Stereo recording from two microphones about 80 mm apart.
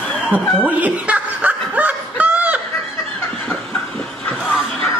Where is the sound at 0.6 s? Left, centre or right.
Centre.